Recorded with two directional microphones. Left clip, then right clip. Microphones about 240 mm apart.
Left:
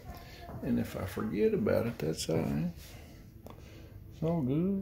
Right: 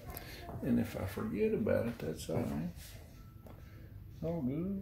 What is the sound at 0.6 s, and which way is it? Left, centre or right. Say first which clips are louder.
Speech: left 1 dB; centre.